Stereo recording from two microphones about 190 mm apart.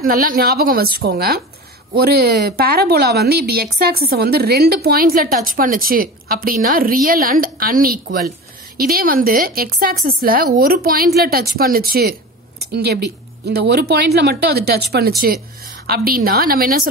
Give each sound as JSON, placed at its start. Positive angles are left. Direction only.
{"t": 0.0, "sound": "a woman's voice", "side_deg": -50}